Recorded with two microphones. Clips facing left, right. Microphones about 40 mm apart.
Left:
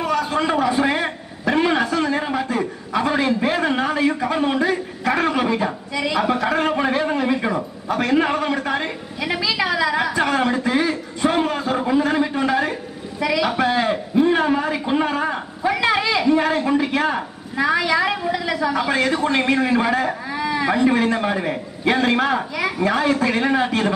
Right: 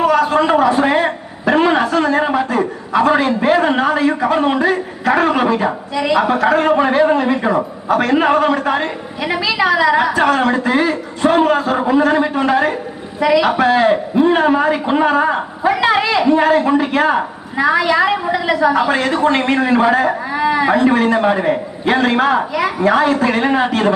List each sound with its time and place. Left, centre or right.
0.0 s a sound: centre
2.1 s a man's voice: centre
15.6 s a woman's voice: centre
17.6 s a woman's voice: centre